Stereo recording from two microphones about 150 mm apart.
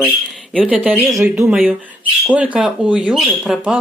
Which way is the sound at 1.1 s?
20° right (ahead or behind).